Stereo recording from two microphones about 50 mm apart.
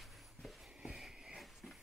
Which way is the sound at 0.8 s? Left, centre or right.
Centre.